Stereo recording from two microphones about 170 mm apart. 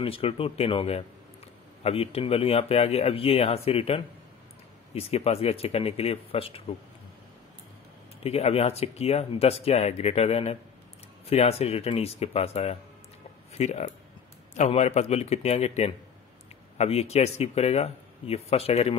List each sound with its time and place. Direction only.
0.0 s speech: 35° left (ahead or behind)
8.2 s speech: 35° left (ahead or behind)